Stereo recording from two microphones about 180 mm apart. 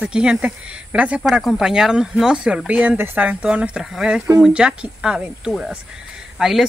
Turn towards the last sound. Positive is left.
turn(degrees=0)  # may be behind; listen again after turning